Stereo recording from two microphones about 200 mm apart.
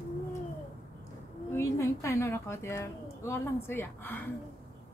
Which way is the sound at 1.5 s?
15° left (ahead or behind).